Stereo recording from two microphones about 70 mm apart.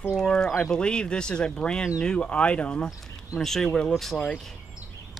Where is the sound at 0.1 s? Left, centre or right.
Centre.